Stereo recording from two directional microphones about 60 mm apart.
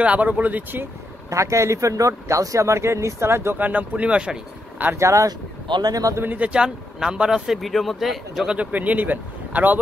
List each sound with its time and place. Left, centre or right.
0.0 s speech: right
1.3 s speech: right
3.5 s speech: right
4.9 s speech: right
5.9 s a man's voice: right
6.2 s speech: right; by 8.5 s centre
8.5 s speech: right